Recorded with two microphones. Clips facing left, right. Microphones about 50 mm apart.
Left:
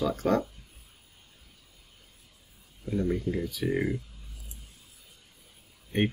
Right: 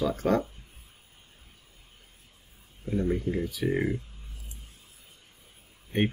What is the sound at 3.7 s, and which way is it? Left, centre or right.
Speech, centre.